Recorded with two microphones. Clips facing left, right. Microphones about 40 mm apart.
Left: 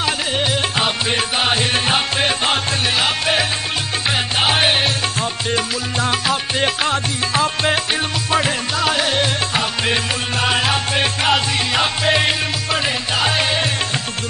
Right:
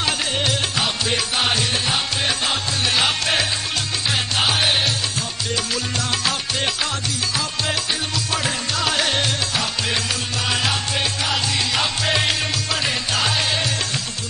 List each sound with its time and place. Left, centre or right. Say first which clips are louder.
0.4 s music: left 3 dB; centre
1.6 s music: left 4 dB; left
3.0 s music: left 2 dB; centre
4.5 s music: left 4 dB; left
8.7 s music: left 3 dB; centre
10.6 s music: left 4 dB; left
11.7 s music: left 6 dB; left